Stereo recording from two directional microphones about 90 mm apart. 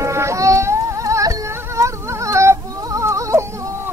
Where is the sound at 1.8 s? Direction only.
35° right (ahead or behind).